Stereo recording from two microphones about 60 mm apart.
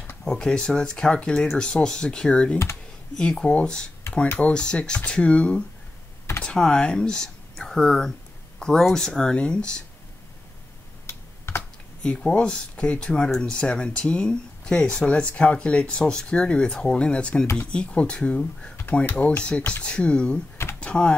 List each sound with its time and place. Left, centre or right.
0.2 s speech: centre
11.1 s computer keyboard: left
12.0 s speech: centre